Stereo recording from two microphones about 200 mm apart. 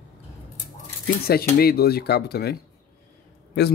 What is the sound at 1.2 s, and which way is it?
A man's voice, 50° left (ahead or behind).